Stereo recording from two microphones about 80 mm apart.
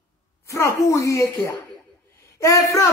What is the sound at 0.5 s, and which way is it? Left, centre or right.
A woman's voice, left.